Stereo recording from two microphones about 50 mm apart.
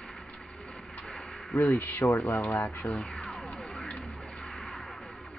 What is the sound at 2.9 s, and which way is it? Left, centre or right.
Speech, left.